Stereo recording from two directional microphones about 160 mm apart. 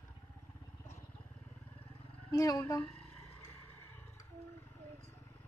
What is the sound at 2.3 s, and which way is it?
Speech, 20° left (ahead or behind).